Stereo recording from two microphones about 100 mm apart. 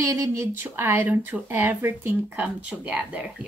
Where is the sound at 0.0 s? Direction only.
30° right (ahead or behind).